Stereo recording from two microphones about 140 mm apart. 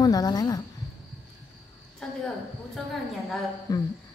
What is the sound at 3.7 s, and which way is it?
Humming, 25° left (ahead or behind).